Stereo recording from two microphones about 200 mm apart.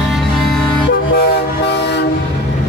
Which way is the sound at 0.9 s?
55° left (ahead or behind).